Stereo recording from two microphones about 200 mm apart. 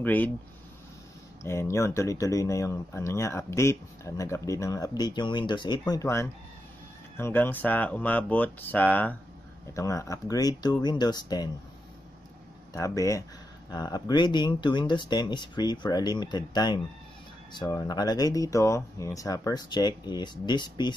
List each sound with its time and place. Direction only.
0.0 s speech: 10° left (ahead or behind)
1.4 s speech: 15° left (ahead or behind)
12.7 s speech: 15° left (ahead or behind)